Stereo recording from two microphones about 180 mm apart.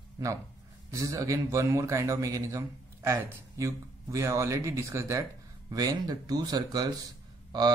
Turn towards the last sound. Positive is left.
turn(degrees=-20)  # may be behind; listen again after turning